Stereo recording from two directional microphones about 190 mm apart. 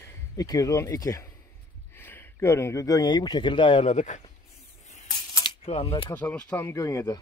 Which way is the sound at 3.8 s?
40° left (ahead or behind).